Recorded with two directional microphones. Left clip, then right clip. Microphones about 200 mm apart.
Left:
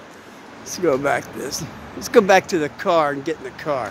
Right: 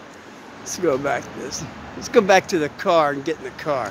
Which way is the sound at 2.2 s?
10° left (ahead or behind).